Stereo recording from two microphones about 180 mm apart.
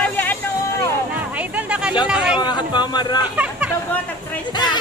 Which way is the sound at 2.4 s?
25° left (ahead or behind).